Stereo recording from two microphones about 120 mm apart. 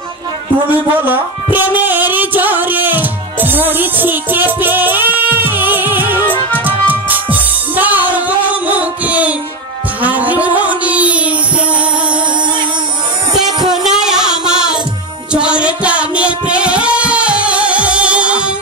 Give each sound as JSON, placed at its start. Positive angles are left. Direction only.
{"t": 0.9, "sound": "speech", "side_deg": -15}
{"t": 6.6, "sound": "music", "side_deg": -15}
{"t": 13.5, "sound": "music", "side_deg": -35}
{"t": 13.8, "sound": "music", "side_deg": -5}